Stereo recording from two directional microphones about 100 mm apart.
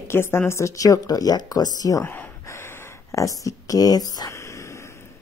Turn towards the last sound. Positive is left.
turn(degrees=40)  # may be behind; listen again after turning